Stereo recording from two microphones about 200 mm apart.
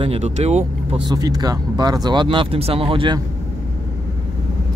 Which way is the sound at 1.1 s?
20° right (ahead or behind).